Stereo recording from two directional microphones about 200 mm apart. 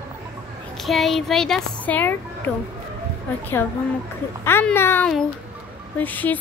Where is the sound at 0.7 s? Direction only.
Centre (ahead or behind).